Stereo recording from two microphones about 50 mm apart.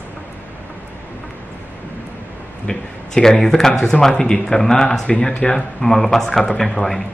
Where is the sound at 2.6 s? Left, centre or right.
Centre.